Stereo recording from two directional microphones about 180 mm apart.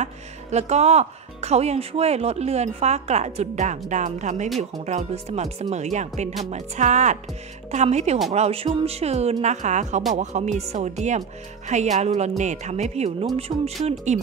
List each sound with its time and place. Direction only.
0.0 s speech: 40° right (ahead or behind)
13.5 s speech: 25° right (ahead or behind)
13.8 s speech: 40° right (ahead or behind)